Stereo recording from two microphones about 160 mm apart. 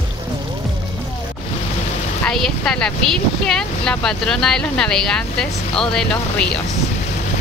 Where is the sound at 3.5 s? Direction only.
5° left (ahead or behind).